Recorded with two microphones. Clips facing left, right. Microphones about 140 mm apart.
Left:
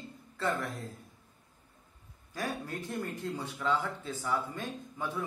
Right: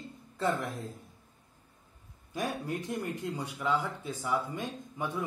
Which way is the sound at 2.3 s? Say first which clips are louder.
Right 3 dB; 20° right (ahead or behind).